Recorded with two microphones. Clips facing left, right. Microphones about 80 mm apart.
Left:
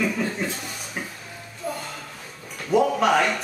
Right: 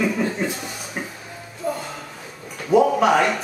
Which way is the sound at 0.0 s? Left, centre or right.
Centre.